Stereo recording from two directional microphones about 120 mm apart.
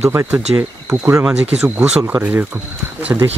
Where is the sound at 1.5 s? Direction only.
10° right (ahead or behind).